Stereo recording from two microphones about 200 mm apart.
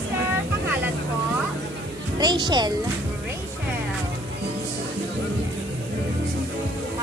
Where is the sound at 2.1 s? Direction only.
20° right (ahead or behind).